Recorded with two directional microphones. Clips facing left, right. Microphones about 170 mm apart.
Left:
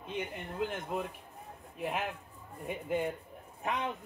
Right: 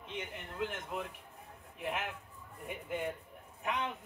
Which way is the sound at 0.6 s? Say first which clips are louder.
Left 3 dB; 35° left (ahead or behind).